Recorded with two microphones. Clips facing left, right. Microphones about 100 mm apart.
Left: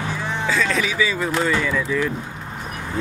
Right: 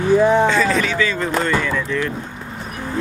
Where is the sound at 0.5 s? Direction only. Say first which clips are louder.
Right 4 dB; centre (ahead or behind).